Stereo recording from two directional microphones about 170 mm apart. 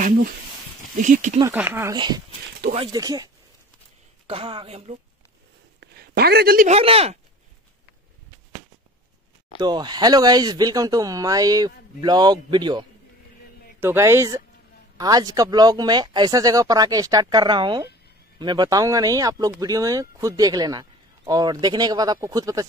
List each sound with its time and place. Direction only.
0.9 s speech: 50° right (ahead or behind)
1.4 s speech: 10° right (ahead or behind)
2.0 s speech: 25° right (ahead or behind)
4.3 s speech: 30° right (ahead or behind)
5.8 s a sound: 70° right (ahead or behind)
6.7 s speech: 35° right (ahead or behind)
9.6 s speech: 25° right (ahead or behind)
13.7 s speech: 15° right (ahead or behind)